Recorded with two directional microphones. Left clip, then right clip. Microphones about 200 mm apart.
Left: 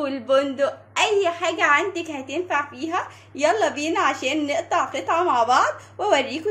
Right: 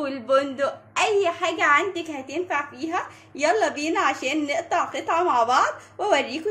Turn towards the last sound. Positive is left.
turn(degrees=0)  # may be behind; listen again after turning